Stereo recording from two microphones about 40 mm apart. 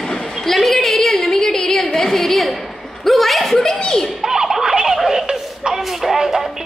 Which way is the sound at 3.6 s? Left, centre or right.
Centre.